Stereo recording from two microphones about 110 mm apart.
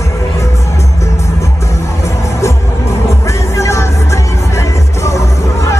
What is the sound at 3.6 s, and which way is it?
Music, 25° left (ahead or behind).